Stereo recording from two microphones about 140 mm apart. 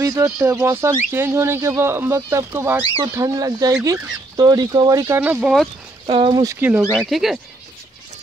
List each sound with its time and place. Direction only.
0.0 s speech: 25° right (ahead or behind)
6.0 s speech: 40° right (ahead or behind)
6.3 s speech: 25° right (ahead or behind)
7.0 s speech: centre (ahead or behind)